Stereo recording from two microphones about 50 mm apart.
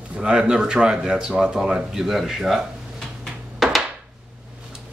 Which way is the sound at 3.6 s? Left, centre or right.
Centre.